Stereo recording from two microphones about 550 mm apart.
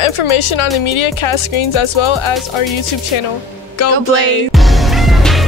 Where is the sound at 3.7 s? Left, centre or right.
Left.